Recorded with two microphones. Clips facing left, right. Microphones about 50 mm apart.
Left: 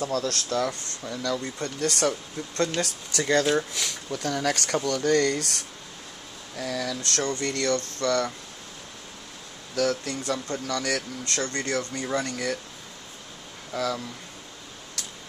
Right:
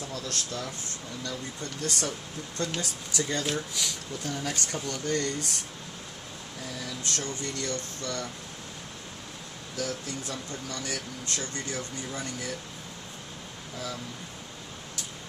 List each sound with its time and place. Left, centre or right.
0.0 s speech: left
1.6 s speech: left
4.7 s speech: left
6.6 s speech: left
9.8 s speech: left
13.7 s speech: left